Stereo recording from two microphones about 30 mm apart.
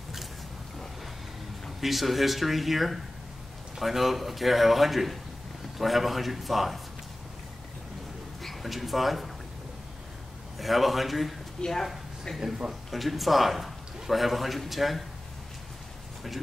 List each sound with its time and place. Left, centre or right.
1.8 s a man's voice: centre
8.4 s speech: centre
10.6 s a man's voice: centre
11.6 s speech: left
12.9 s a man's voice: centre